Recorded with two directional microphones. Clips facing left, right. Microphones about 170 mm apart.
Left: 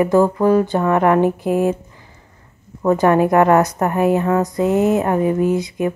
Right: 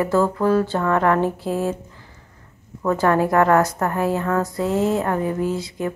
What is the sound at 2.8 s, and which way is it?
A woman's voice, 20° left (ahead or behind).